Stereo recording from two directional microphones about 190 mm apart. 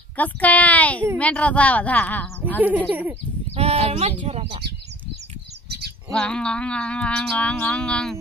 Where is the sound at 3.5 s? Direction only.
30° right (ahead or behind).